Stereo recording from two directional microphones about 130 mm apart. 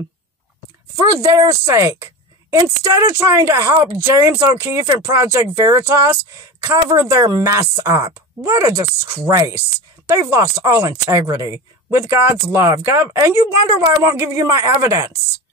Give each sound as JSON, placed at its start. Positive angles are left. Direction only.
{"t": 1.2, "sound": "speech", "side_deg": -30}
{"t": 1.6, "sound": "speech", "side_deg": -20}